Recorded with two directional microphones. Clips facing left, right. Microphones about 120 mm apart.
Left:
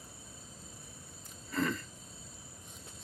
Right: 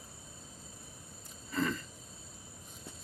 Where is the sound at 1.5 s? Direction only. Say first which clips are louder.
Even; centre (ahead or behind).